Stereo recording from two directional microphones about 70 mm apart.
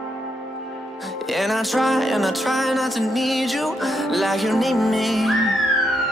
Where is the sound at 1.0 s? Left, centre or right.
Centre.